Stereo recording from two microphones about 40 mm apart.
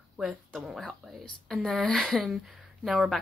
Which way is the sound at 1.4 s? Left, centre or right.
Centre.